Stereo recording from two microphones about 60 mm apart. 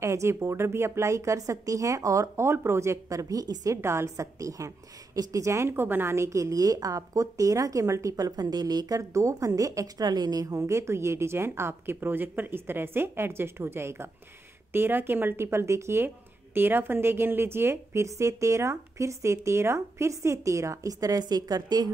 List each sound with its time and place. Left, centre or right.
0.0 s a woman's voice: right
2.3 s a woman's voice: right
3.7 s a woman's voice: right
5.7 s a woman's voice: right
10.7 s speech: right
16.5 s a woman's voice: right